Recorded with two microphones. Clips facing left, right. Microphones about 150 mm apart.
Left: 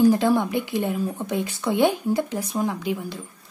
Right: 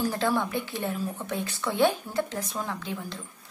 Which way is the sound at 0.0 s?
15° left (ahead or behind).